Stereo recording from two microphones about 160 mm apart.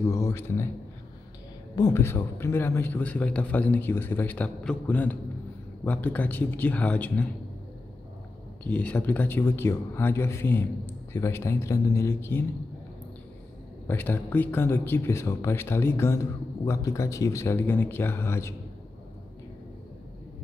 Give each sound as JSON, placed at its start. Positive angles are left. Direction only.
{"t": 0.0, "sound": "a man's voice", "side_deg": 20}
{"t": 1.8, "sound": "speech", "side_deg": 20}
{"t": 8.6, "sound": "speech", "side_deg": 10}
{"t": 13.8, "sound": "speech", "side_deg": 10}